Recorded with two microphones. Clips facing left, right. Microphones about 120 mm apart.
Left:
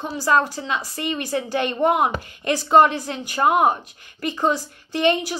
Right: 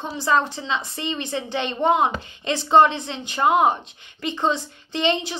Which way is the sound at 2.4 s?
25° right (ahead or behind).